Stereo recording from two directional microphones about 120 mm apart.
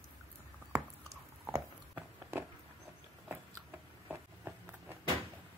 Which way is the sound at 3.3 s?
20° right (ahead or behind).